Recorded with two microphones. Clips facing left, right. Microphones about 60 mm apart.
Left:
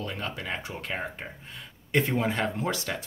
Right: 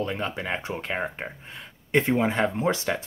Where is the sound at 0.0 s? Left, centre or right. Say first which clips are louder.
Right 5 dB; right.